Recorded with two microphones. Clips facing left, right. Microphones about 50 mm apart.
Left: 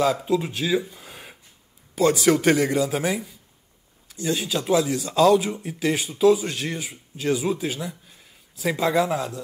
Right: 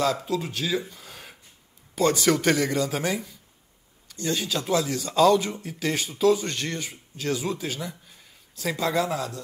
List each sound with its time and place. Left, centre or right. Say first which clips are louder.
0.2 s speech: left 4 dB; centre
2.0 s a man's voice: left 3 dB; centre
7.9 s a sound: left 1 dB; centre
8.7 s speech: left 3 dB; centre